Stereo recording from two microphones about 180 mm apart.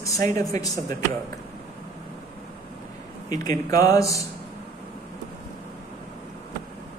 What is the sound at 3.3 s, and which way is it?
Speech, 20° left (ahead or behind).